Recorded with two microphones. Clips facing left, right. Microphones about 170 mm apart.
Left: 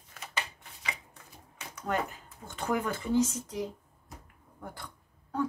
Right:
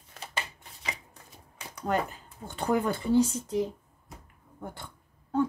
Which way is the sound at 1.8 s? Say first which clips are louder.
Right 3 dB; 35° right (ahead or behind).